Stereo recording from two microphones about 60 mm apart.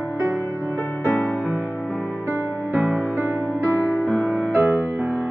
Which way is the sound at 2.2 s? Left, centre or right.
Right.